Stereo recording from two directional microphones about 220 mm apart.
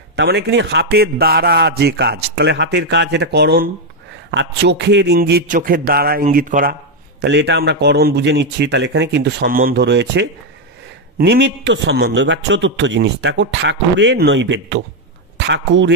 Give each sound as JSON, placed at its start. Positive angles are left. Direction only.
{"t": 0.1, "sound": "a man's voice", "side_deg": -50}